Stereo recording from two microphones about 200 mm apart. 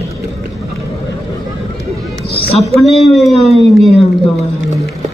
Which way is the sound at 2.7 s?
Centre (ahead or behind).